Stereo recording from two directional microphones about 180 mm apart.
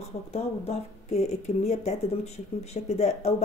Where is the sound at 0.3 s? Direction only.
35° left (ahead or behind).